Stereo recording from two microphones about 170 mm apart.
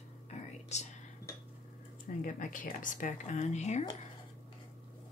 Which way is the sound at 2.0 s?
50° left (ahead or behind).